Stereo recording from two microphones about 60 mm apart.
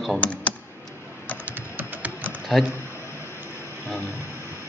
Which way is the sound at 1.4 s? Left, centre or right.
Right.